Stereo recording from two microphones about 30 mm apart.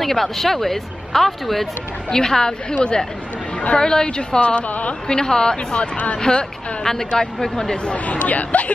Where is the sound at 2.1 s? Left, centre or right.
Left.